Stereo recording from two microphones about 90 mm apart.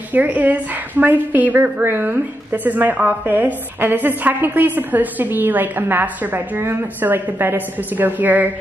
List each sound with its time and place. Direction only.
0.1 s a woman's voice: 20° right (ahead or behind)